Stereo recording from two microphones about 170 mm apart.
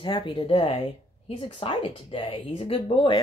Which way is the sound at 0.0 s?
30° left (ahead or behind).